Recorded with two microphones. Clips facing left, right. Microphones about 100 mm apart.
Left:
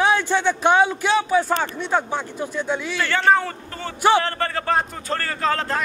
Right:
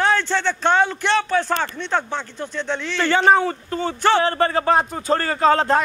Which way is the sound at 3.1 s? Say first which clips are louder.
Right 3 dB; 20° right (ahead or behind).